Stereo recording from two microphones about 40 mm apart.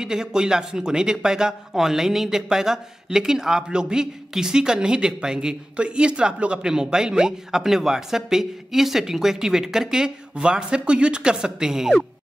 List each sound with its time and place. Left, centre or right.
0.0 s speech: centre